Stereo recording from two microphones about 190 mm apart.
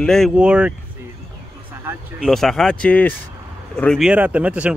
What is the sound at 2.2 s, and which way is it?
Speech, centre (ahead or behind).